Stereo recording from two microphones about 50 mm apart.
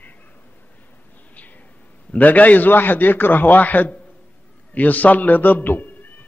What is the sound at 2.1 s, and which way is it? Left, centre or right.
A man's voice, left.